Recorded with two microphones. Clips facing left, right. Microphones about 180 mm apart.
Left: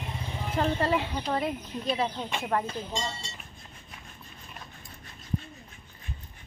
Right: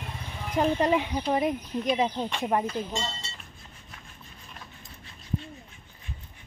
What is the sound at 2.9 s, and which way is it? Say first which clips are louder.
Speech: even; 15° left (ahead or behind).